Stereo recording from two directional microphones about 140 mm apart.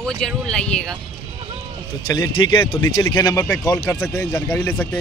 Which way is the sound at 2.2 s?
35° left (ahead or behind).